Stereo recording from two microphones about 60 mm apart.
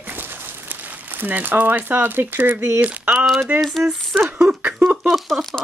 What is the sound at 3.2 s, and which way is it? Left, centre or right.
Speech, centre.